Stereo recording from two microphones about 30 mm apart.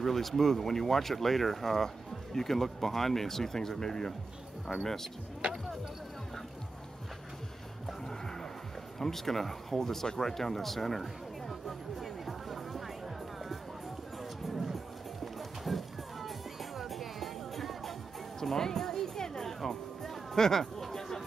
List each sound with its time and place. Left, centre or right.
0.0 s speech: centre
5.4 s speech: right
9.0 s speech: centre
10.1 s music: centre
14.4 s music: centre
18.4 s music: centre
20.8 s a sound: centre